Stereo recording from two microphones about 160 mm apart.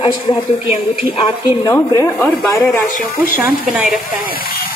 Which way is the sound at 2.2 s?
10° left (ahead or behind).